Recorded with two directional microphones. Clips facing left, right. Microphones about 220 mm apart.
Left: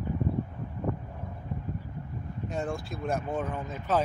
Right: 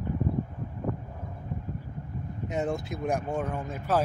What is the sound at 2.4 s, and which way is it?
Speech, 20° right (ahead or behind).